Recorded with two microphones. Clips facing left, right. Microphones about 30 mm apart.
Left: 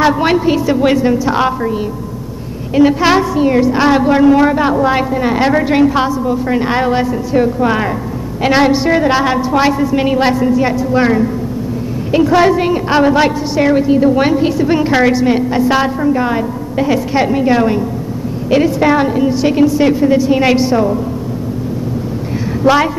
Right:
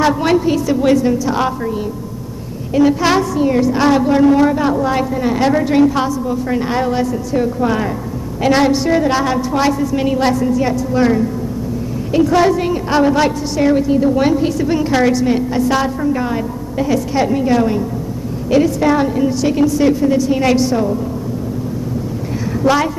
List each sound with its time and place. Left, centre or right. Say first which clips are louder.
0.0 s a woman's voice: left 2 dB; left
2.7 s a woman's voice: left 3 dB; left
22.6 s a woman's voice: left 3 dB; centre